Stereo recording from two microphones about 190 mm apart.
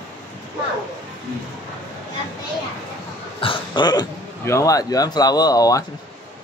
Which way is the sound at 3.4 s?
25° left (ahead or behind).